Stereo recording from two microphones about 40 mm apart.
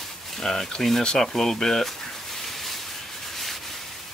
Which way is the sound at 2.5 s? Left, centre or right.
Centre.